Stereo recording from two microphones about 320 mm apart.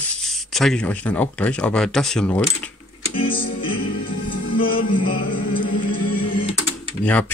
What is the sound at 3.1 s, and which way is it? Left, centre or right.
Music, centre.